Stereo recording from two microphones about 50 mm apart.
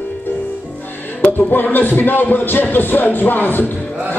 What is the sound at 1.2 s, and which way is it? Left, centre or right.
Music, left.